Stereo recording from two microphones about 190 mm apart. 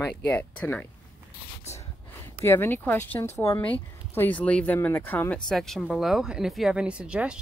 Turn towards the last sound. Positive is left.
turn(degrees=-5)  # may be behind; listen again after turning